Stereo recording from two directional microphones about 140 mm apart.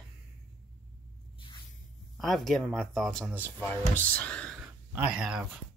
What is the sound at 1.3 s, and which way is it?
Spray, 35° left (ahead or behind).